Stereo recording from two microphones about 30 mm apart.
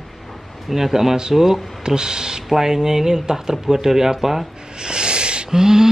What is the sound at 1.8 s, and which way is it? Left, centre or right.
Speech, right.